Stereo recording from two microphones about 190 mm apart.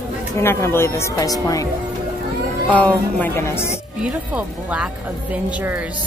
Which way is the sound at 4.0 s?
5° right (ahead or behind).